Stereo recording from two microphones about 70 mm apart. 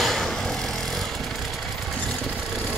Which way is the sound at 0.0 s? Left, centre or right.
Centre.